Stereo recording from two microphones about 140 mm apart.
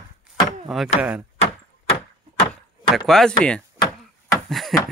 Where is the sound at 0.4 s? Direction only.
Centre (ahead or behind).